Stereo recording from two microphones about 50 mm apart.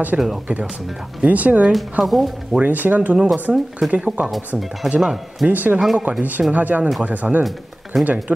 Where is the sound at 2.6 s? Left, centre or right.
Right.